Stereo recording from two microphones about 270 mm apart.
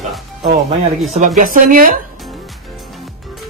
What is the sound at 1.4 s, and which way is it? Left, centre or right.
Speech, right.